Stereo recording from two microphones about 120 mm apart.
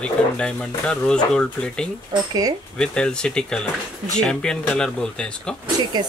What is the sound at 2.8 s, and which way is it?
Speech, 5° left (ahead or behind).